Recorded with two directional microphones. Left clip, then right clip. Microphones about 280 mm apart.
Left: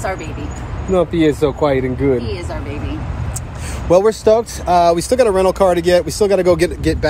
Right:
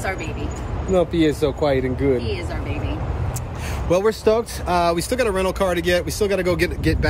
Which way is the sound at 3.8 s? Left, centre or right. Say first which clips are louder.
Left 6 dB; centre.